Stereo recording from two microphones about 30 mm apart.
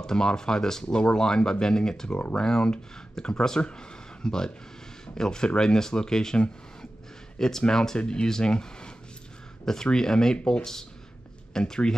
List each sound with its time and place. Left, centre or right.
0.0 s speech: left
0.8 s speech: left
9.9 s speech: left
10.6 s speech: centre